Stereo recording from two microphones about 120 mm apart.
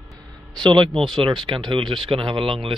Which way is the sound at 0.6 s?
40° right (ahead or behind).